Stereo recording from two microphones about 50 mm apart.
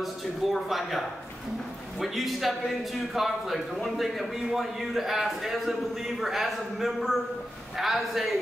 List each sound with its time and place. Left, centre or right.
0.0 s a man's voice: centre